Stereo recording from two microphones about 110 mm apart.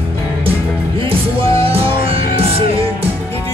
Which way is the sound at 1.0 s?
60° right (ahead or behind).